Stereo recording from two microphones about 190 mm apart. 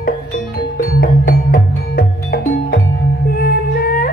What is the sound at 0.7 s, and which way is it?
Music, 50° left (ahead or behind).